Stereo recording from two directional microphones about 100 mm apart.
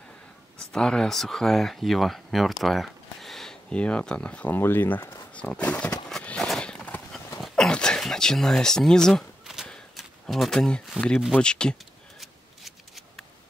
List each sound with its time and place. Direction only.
0.6 s speech: 5° left (ahead or behind)
6.0 s horse: 5° left (ahead or behind)
7.4 s a sound: 5° left (ahead or behind)
11.3 s speech: 10° left (ahead or behind)
12.2 s scissors: centre (ahead or behind)